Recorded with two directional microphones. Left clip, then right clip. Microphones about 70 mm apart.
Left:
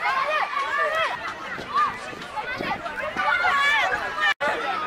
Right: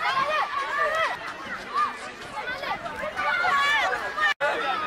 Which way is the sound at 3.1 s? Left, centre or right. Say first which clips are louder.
Left 3 dB; left.